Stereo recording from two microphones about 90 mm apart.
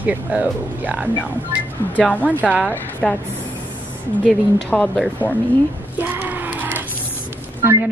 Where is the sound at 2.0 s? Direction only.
15° left (ahead or behind).